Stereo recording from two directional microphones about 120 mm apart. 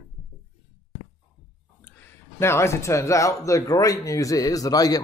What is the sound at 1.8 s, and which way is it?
Speech, 15° left (ahead or behind).